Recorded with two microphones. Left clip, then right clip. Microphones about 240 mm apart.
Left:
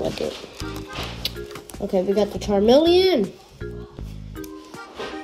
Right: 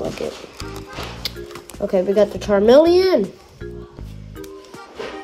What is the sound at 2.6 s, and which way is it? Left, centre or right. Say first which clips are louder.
Speech: right 3 dB; left.